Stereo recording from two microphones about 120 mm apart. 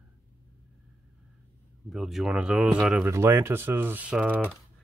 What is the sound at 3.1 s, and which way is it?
Speech, 20° right (ahead or behind).